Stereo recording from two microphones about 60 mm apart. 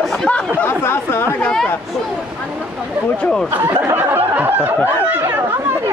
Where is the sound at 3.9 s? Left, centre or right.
Right.